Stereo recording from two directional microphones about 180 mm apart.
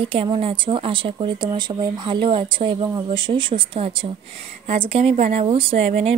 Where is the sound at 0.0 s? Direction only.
30° right (ahead or behind).